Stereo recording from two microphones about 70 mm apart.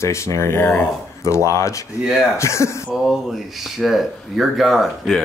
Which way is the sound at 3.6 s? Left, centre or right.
Centre.